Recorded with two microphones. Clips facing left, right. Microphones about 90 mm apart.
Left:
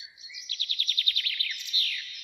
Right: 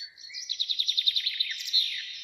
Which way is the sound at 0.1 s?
20° right (ahead or behind).